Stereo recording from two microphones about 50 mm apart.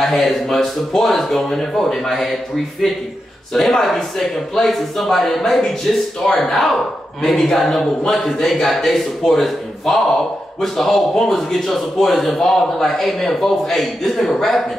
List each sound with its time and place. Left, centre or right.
0.0 s a man's voice: centre